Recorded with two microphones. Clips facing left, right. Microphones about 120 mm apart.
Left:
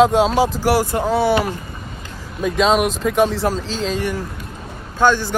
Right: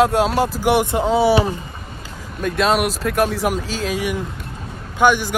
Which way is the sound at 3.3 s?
10° right (ahead or behind).